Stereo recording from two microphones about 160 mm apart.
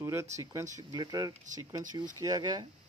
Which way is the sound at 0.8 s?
25° right (ahead or behind).